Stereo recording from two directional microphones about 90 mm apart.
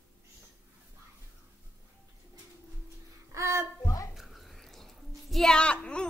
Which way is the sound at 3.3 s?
35° right (ahead or behind).